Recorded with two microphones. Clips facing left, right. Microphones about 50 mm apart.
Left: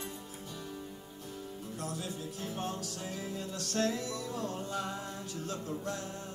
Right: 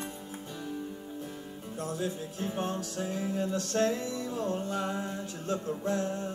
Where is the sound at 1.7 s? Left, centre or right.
Right.